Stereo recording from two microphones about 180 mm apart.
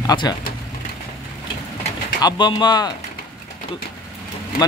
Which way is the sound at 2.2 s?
25° left (ahead or behind).